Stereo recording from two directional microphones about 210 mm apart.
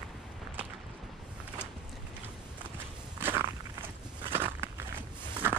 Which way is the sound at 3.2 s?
10° right (ahead or behind).